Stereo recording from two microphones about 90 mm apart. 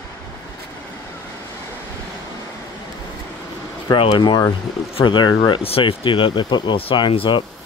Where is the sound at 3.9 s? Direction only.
70° left (ahead or behind).